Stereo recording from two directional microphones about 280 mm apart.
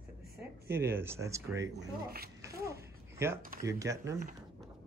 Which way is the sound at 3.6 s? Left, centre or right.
Centre.